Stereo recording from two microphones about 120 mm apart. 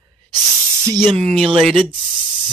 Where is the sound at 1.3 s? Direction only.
45° right (ahead or behind).